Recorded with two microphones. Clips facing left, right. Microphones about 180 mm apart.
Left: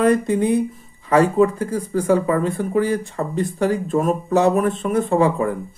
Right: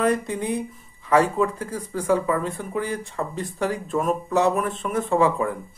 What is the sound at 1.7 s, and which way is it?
Speech, 30° left (ahead or behind).